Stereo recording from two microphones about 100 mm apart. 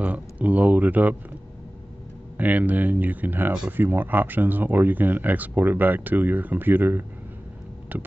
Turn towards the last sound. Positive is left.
turn(degrees=-20)  # may be behind; listen again after turning